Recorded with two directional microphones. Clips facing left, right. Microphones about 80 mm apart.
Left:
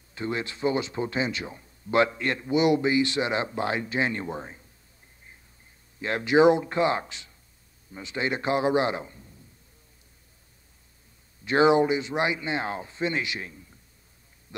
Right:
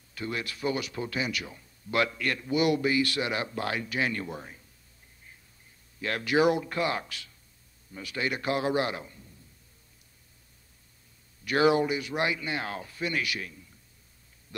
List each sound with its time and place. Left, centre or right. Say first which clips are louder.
0.1 s speech: left 4 dB; left
5.9 s speech: left 5 dB; left
11.4 s speech: left 4 dB; left